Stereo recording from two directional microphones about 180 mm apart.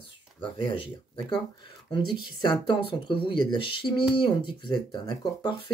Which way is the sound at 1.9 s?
30° left (ahead or behind).